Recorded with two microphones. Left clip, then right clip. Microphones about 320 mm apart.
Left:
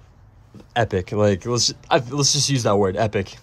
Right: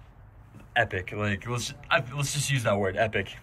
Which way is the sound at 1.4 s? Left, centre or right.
Centre.